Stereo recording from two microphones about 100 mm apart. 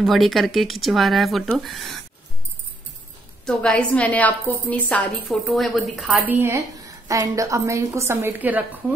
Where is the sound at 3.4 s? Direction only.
10° left (ahead or behind).